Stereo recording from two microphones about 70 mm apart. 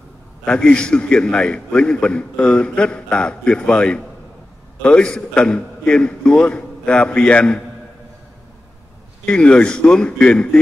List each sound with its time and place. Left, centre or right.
0.5 s a man's voice: centre
9.2 s a man's voice: centre